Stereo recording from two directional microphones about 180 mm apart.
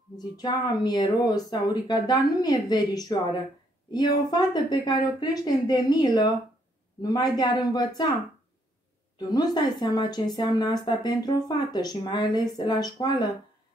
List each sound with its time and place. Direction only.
0.2 s speech: 20° left (ahead or behind)
9.3 s speech: 20° left (ahead or behind)